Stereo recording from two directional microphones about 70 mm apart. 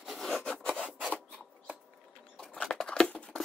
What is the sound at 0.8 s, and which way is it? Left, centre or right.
Scissors, centre.